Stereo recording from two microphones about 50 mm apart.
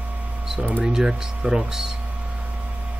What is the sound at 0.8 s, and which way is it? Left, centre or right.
Speech, centre.